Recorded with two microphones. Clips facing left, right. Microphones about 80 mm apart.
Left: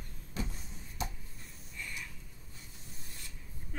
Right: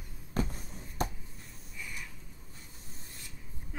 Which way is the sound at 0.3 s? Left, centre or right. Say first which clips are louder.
Right 7 dB; right.